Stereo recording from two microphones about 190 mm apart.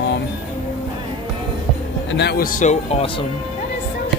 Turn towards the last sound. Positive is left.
turn(degrees=30)  # may be behind; listen again after turning